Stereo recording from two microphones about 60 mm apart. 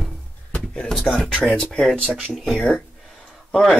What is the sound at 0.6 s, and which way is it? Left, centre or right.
Speech, centre.